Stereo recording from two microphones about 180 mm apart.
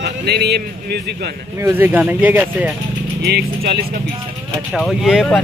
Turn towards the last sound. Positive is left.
turn(degrees=0)  # may be behind; listen again after turning